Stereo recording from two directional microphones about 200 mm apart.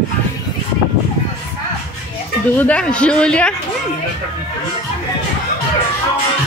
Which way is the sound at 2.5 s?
5° left (ahead or behind).